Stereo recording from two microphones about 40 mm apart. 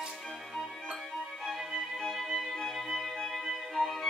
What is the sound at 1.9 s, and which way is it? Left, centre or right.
Music, centre.